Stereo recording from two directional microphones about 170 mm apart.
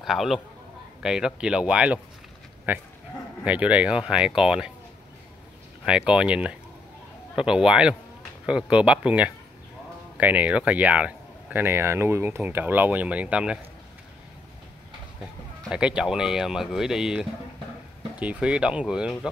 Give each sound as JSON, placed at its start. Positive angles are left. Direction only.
{"t": 0.0, "sound": "speech", "side_deg": 0}
{"t": 5.9, "sound": "speech", "side_deg": -5}
{"t": 15.7, "sound": "speech", "side_deg": -5}